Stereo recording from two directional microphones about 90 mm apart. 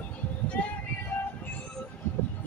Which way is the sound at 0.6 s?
15° left (ahead or behind).